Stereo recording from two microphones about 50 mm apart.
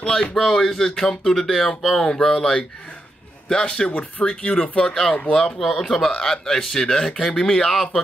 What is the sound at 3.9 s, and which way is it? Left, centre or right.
A man's voice, left.